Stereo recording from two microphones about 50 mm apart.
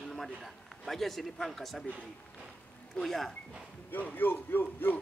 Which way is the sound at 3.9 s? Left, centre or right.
Left.